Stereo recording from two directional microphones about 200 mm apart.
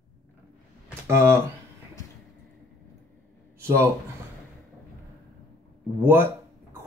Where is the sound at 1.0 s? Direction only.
10° right (ahead or behind).